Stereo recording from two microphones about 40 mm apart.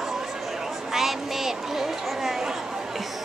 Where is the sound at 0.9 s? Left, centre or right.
Centre.